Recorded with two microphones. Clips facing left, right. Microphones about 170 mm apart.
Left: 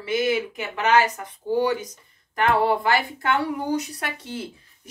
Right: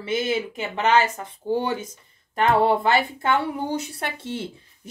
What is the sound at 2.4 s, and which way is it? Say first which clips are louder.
A woman's voice: right 2 dB; 25° right (ahead or behind).